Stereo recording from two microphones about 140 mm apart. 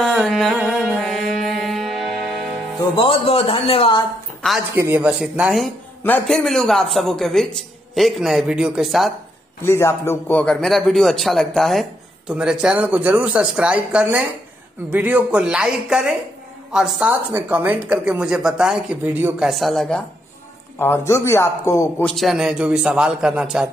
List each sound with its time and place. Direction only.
0.0 s music: centre (ahead or behind)
2.8 s speech: 40° left (ahead or behind)
4.7 s speech: 10° right (ahead or behind)
6.0 s a man's voice: 15° left (ahead or behind)
6.3 s a man's voice: centre (ahead or behind)
9.6 s a man's voice: 20° left (ahead or behind); by 20.0 s centre (ahead or behind)
20.8 s a man's voice: 20° left (ahead or behind)
22.0 s a man's voice: centre (ahead or behind)